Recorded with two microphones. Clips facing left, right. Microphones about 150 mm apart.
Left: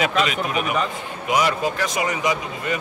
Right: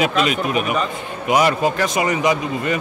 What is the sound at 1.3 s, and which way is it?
A man's voice, 60° right (ahead or behind).